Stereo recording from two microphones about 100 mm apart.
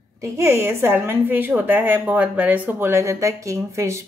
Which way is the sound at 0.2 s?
25° right (ahead or behind).